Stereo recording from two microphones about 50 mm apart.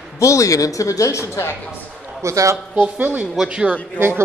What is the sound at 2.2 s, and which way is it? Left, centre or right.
Speech, right.